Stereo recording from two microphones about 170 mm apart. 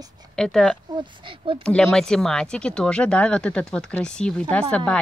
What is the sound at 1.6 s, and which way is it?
Speech, 5° left (ahead or behind).